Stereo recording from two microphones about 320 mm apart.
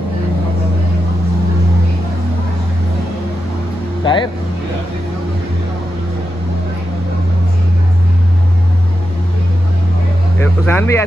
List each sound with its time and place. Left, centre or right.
4.0 s music: centre
10.4 s music: centre